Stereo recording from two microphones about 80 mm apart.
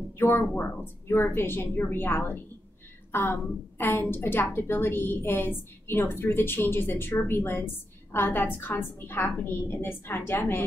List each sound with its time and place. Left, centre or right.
0.2 s a woman's voice: left